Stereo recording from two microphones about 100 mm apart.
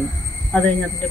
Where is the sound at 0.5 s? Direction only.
15° left (ahead or behind).